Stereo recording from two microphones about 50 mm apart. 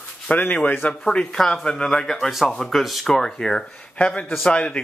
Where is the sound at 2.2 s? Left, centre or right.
Centre.